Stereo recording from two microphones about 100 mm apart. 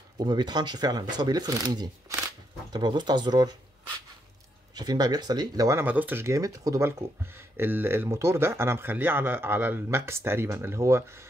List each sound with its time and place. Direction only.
0.2 s speech: 45° right (ahead or behind)
4.7 s speech: 40° right (ahead or behind)
5.8 s speech: 20° right (ahead or behind)
6.2 s speech: 35° right (ahead or behind)